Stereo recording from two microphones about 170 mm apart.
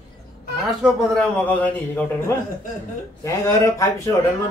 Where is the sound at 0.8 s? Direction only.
5° left (ahead or behind).